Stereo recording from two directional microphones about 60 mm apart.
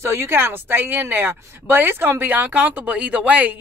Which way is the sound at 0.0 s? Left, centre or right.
Right.